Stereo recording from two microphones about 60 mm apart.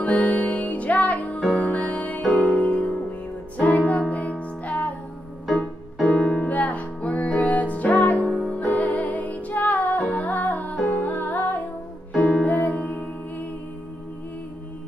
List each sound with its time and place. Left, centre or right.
0.0 s music: left
5.5 s music: centre
6.4 s music: left